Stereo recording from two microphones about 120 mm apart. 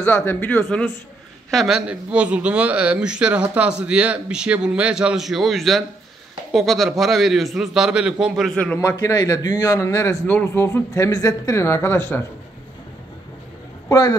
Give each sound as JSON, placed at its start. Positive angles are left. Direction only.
{"t": 0.0, "sound": "speech", "side_deg": 15}
{"t": 1.5, "sound": "a man's voice", "side_deg": 0}
{"t": 8.7, "sound": "speech", "side_deg": 25}
{"t": 13.8, "sound": "a man's voice", "side_deg": 35}